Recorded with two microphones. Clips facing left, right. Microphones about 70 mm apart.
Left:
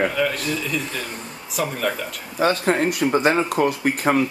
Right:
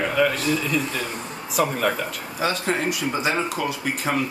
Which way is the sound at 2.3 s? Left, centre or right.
Left.